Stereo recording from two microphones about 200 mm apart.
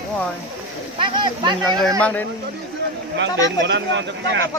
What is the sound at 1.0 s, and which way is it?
Speech, 25° right (ahead or behind).